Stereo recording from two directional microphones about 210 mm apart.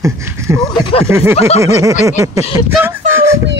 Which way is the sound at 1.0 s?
10° right (ahead or behind).